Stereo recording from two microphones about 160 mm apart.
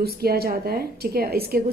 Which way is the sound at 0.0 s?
75° right (ahead or behind).